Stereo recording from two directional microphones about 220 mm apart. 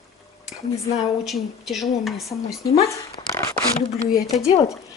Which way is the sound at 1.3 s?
Centre (ahead or behind).